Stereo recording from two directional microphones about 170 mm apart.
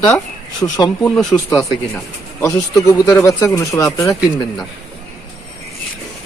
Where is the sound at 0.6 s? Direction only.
25° left (ahead or behind).